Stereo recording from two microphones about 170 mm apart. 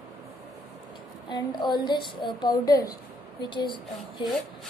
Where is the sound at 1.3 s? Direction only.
25° left (ahead or behind).